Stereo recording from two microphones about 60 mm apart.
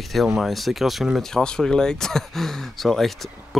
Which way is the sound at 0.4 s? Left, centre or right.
Centre.